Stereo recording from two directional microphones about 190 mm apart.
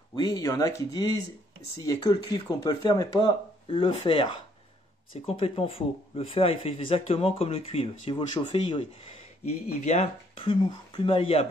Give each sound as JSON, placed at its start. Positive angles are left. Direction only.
{"t": 0.1, "sound": "speech", "side_deg": 20}